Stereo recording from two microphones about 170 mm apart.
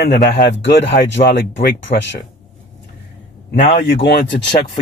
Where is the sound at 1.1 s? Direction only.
90° left.